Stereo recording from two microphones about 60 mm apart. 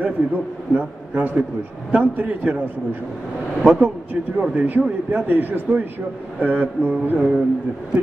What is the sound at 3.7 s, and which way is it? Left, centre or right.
A man's voice, right.